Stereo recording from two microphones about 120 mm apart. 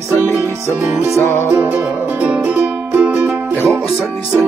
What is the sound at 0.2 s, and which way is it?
Music, 15° right (ahead or behind).